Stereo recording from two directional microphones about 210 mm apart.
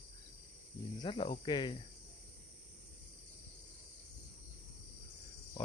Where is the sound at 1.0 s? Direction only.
25° left (ahead or behind).